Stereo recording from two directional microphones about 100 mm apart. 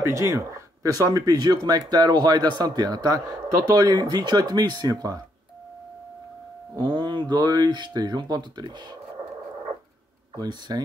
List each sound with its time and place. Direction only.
0.0 s speech: 30° right (ahead or behind)
6.8 s speech: 55° right (ahead or behind)
10.3 s speech: 40° right (ahead or behind)